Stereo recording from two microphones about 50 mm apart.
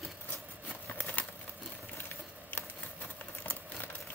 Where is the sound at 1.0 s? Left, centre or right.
Left.